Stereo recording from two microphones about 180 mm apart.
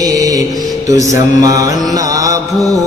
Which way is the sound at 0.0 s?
20° right (ahead or behind).